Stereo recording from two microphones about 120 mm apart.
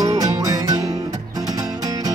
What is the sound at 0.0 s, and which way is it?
Music, 30° right (ahead or behind).